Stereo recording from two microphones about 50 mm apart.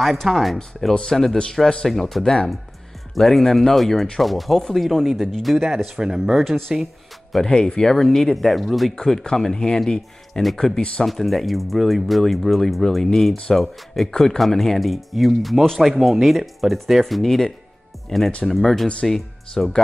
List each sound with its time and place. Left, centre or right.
0.0 s speech: centre
7.4 s speech: centre
8.9 s speech: centre
18.1 s speech: centre
18.5 s speech: centre